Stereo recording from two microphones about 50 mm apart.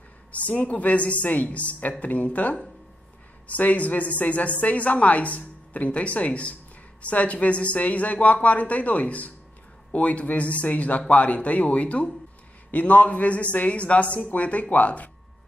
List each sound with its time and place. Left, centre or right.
0.3 s a woman's voice: left